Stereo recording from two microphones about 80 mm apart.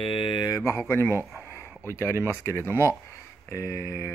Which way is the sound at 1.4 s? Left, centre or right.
Left.